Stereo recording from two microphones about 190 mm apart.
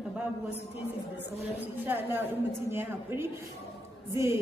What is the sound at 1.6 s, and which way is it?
A woman's voice, 10° right (ahead or behind).